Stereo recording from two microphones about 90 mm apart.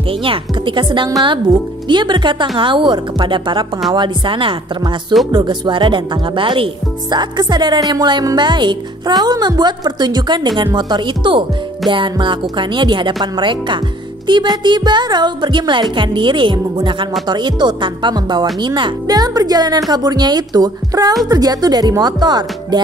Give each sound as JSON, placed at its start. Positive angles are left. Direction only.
{"t": 0.1, "sound": "speech", "side_deg": -80}
{"t": 5.3, "sound": "speech", "side_deg": -55}
{"t": 14.2, "sound": "music", "side_deg": -60}
{"t": 14.6, "sound": "speech", "side_deg": -55}